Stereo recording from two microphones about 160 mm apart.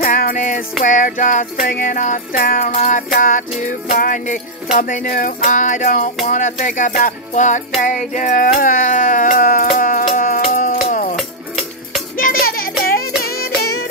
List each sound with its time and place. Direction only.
0.0 s music: 60° left (ahead or behind)
8.1 s a sound: 50° left (ahead or behind)
11.1 s music: centre (ahead or behind)
12.2 s music: 65° left (ahead or behind)